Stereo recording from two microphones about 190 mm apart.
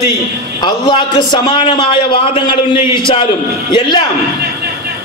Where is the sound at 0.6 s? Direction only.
25° left (ahead or behind).